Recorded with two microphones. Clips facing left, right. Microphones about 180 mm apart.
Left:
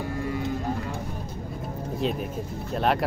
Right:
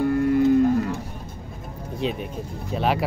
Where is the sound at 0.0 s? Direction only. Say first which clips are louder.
Right 10 dB; 60° right (ahead or behind).